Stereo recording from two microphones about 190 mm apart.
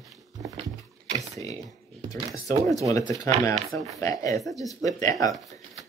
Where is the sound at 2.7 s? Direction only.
15° left (ahead or behind).